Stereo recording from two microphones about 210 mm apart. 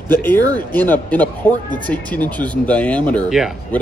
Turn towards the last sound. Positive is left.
turn(degrees=0)  # may be behind; listen again after turning